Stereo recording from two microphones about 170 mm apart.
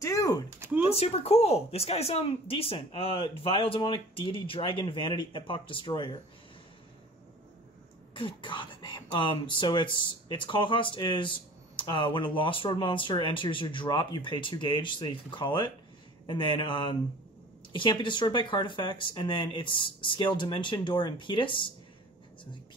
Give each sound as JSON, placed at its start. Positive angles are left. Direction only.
{"t": 0.0, "sound": "a sound", "side_deg": 20}
{"t": 0.8, "sound": "speech", "side_deg": 35}
{"t": 8.1, "sound": "speech", "side_deg": 30}